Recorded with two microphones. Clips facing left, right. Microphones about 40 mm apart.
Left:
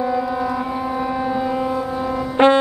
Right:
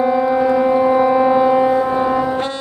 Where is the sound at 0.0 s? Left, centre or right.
Right.